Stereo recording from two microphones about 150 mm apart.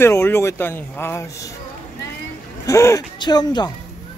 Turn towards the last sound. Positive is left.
turn(degrees=25)  # may be behind; listen again after turning